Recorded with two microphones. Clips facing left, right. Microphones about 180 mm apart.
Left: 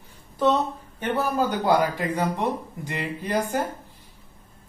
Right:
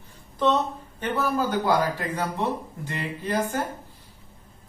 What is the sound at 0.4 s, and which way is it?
Speech, 10° left (ahead or behind).